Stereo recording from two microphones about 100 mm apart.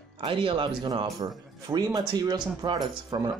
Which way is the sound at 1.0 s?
40° right (ahead or behind).